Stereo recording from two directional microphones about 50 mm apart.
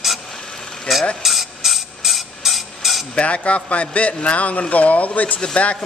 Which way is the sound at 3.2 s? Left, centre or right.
Left.